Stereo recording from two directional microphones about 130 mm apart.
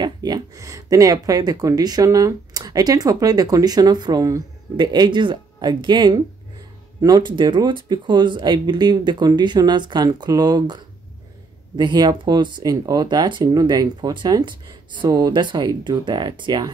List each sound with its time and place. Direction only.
0.0 s speech: 30° right (ahead or behind)